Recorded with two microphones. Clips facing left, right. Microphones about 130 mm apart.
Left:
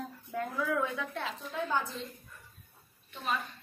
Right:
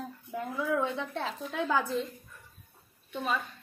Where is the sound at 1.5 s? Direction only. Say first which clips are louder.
Right 3 dB; 90° right.